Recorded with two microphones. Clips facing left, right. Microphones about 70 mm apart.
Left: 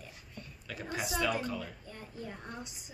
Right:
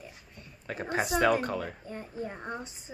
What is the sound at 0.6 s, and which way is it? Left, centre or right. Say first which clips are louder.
A woman's voice: right 7 dB; right.